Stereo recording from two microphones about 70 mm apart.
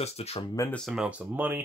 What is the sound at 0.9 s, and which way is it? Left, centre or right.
Speech, centre.